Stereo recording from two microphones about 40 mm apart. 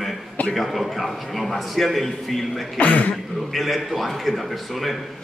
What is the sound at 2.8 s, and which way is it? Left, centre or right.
Speech, left.